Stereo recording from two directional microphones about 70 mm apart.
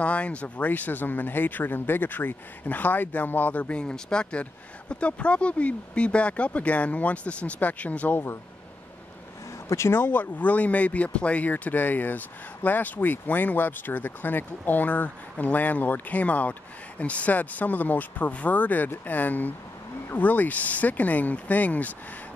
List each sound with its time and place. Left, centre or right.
0.0 s speech: centre
9.7 s speech: left